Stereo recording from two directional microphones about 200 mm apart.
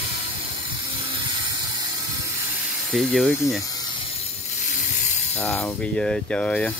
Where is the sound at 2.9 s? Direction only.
Centre (ahead or behind).